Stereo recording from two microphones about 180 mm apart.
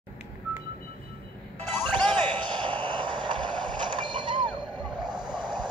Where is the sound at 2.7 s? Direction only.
25° right (ahead or behind).